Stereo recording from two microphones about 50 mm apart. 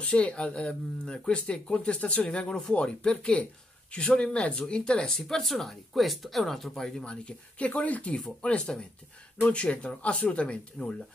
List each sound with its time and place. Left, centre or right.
0.0 s speech: left
7.1 s speech: left